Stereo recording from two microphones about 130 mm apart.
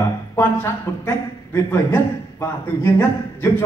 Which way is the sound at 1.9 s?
15° left (ahead or behind).